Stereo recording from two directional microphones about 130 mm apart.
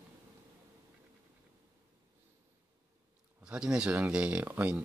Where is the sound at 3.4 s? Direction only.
5° right (ahead or behind).